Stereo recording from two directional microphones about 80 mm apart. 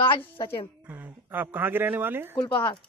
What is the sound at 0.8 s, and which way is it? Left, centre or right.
Speech, right.